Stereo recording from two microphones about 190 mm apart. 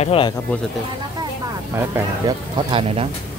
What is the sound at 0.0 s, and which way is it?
Speech, 30° left (ahead or behind).